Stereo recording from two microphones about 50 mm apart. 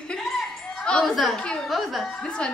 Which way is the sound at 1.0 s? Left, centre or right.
Centre.